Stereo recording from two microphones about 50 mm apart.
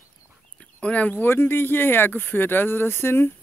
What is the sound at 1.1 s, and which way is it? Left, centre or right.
Speech, left.